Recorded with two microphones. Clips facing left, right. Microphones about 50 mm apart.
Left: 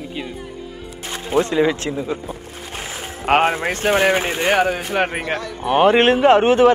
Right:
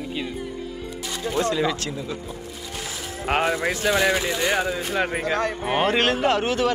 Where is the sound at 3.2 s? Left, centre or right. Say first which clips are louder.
Left 6 dB; left.